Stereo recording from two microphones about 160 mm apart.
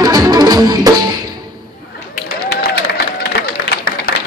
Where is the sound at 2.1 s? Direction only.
80° left.